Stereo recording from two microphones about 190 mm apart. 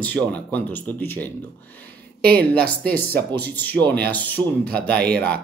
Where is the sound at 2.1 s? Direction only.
55° right (ahead or behind).